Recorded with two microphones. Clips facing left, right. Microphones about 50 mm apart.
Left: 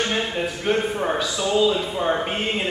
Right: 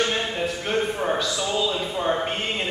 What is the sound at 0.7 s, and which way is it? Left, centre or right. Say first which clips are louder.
A man's voice: left 3 dB; centre.